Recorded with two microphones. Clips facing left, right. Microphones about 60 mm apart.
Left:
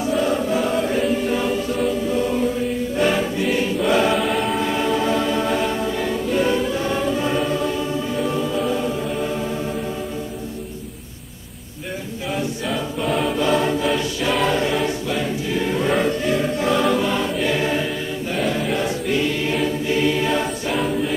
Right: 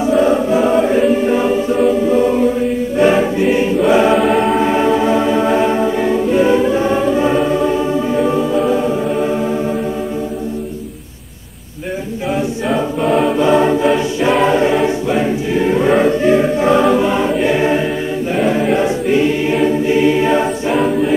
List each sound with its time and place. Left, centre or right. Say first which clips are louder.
0.2 s choir: right 7 dB; centre
1.8 s music: right 10 dB; centre
3.0 s choir: right 8 dB; right
3.8 s choir: right 7 dB; centre
4.6 s choir: right 7 dB; right
13.0 s choir: right 7 dB; centre
13.4 s music: right 7 dB; centre
14.4 s choir: right 6 dB; centre